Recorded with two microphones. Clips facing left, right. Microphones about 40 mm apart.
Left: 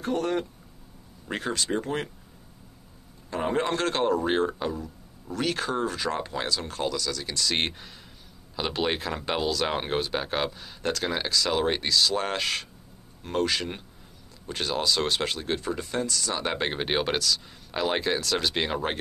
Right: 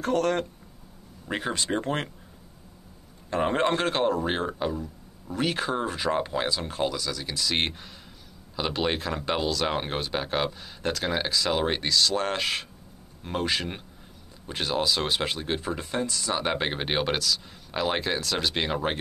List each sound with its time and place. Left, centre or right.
0.0 s speech: right
1.2 s speech: centre
1.5 s speech: right
3.3 s a man's voice: right
3.9 s speech: centre
15.8 s speech: right; by 18.9 s centre